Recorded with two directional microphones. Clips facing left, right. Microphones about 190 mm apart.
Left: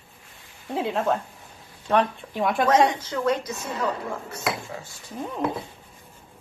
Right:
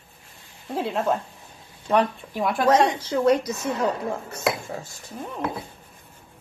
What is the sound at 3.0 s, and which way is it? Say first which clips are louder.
Speech: right 5 dB; 35° right (ahead or behind).